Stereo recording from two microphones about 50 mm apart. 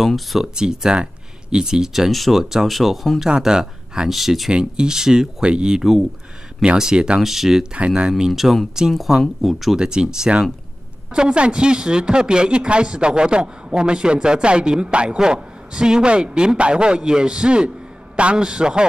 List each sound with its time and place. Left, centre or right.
0.0 s speech: centre
0.6 s speech: centre
3.3 s speech: centre
4.5 s speech: centre
5.8 s speech: centre
6.6 s speech: centre
7.2 s speech: centre
7.7 s speech: right
8.3 s speech: centre
9.8 s speech: centre